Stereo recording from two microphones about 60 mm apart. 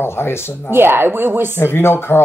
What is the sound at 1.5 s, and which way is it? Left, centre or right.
Speech, left.